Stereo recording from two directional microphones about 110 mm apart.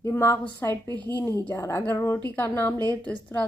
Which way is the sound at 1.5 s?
25° left (ahead or behind).